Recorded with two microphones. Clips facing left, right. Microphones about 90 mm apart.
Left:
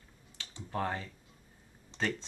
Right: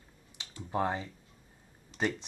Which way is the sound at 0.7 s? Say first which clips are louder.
Right 3 dB; 15° right (ahead or behind).